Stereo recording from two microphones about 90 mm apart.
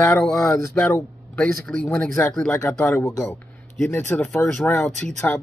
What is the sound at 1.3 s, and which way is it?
Speech, 15° left (ahead or behind).